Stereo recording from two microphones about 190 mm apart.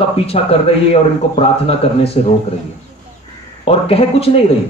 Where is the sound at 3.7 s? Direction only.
30° left (ahead or behind).